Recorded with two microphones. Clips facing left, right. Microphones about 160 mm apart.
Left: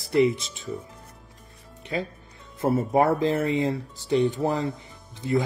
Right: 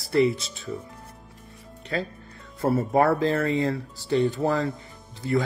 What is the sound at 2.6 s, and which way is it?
Speech, 15° left (ahead or behind).